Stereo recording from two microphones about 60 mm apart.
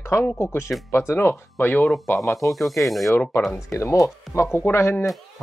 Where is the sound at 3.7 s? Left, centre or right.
Left.